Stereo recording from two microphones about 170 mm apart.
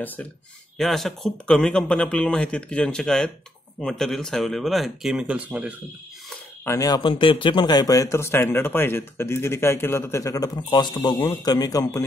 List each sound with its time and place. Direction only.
0.0 s speech: 10° left (ahead or behind); by 5.8 s 5° right (ahead or behind)
6.6 s a man's voice: 20° left (ahead or behind)